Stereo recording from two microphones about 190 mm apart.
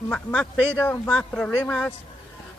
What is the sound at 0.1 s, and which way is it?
Speech, 5° left (ahead or behind).